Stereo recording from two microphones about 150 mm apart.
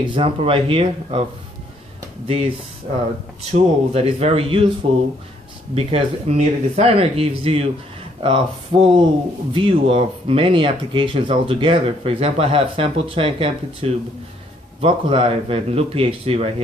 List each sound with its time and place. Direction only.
0.1 s speech: 35° right (ahead or behind)
2.2 s speech: 40° right (ahead or behind)
3.5 s speech: 40° right (ahead or behind)
5.8 s speech: 45° right (ahead or behind)